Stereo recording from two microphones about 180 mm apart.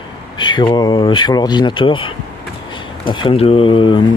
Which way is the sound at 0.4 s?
25° left (ahead or behind).